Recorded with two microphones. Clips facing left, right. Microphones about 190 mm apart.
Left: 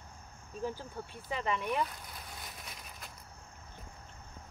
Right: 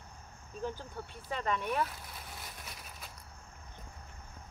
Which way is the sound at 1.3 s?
5° left (ahead or behind).